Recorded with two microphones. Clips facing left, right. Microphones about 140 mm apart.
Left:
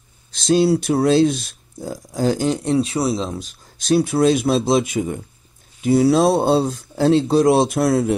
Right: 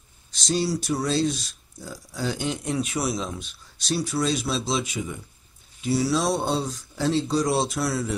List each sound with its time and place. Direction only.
0.4 s speech: 55° left (ahead or behind); by 3.8 s 40° left (ahead or behind)
3.8 s speech: 55° left (ahead or behind)